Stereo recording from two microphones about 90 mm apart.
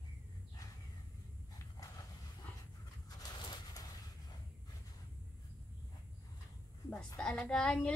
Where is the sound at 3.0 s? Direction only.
45° left (ahead or behind).